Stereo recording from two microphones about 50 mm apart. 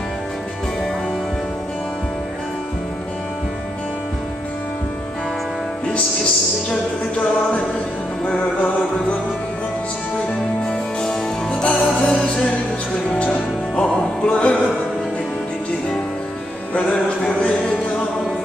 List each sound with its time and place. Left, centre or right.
8.3 s music: centre
10.6 s music: centre
13.2 s music: centre
16.7 s music: left